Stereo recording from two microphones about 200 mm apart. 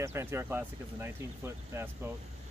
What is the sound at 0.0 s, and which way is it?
Speech, 10° right (ahead or behind).